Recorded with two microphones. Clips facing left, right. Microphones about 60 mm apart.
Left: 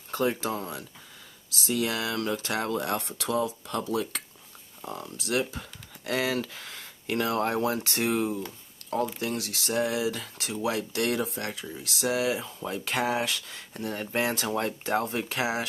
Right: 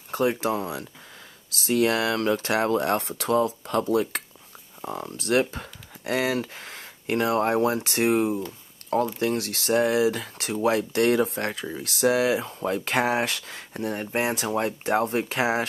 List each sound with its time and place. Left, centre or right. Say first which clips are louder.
0.1 s a sound: right 3 dB; centre
0.4 s speech: right 5 dB; right
1.5 s speech: right 6 dB; right
4.8 s speech: right 5 dB; right
5.1 s speech: right 6 dB; right
6.1 s speech: right 3 dB; right
7.2 s speech: right 5 dB; right
7.9 s speech: right 5 dB; right
13.7 s speech: right 3 dB; right